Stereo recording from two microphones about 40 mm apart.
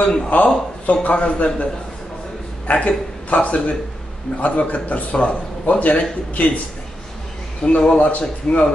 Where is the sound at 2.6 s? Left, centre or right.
Left.